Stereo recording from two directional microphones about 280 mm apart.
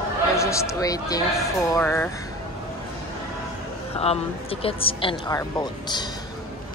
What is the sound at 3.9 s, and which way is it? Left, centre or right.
Speech, left.